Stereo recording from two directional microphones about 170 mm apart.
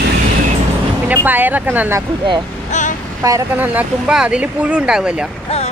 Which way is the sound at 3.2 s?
15° right (ahead or behind).